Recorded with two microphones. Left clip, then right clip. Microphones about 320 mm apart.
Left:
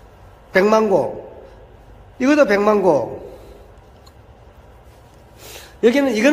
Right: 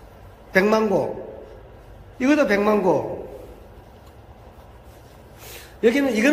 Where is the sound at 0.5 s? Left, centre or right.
Centre.